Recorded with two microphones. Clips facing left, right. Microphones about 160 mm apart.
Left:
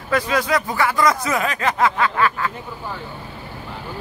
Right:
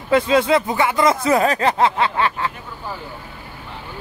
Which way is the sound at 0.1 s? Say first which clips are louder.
Right 5 dB; 25° right (ahead or behind).